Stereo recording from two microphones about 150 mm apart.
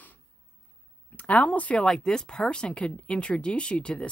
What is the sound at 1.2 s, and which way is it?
Speech, 10° left (ahead or behind).